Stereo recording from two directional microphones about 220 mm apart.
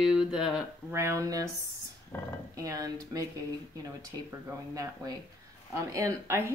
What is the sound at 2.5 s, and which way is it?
Speech, 15° right (ahead or behind).